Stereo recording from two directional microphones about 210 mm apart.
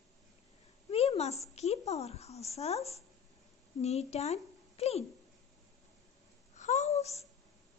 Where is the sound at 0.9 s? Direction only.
30° left (ahead or behind).